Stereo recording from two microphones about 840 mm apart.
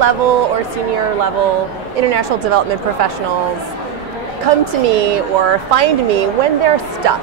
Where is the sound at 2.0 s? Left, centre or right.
Right.